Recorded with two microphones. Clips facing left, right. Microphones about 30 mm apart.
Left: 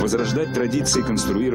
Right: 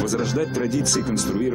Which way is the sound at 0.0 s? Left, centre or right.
Centre.